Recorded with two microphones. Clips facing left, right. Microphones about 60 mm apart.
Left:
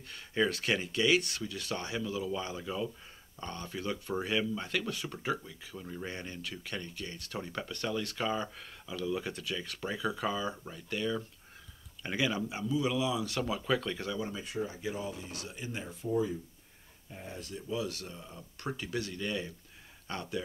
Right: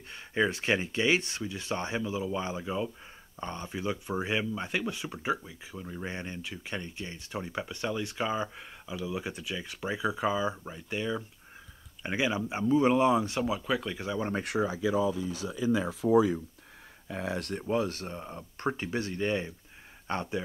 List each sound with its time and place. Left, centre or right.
0.1 s speech: right
12.6 s speech: right
13.4 s speech: centre
14.2 s speech: right
16.0 s speech: right